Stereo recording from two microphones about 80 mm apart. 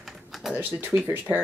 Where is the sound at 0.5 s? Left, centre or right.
Right.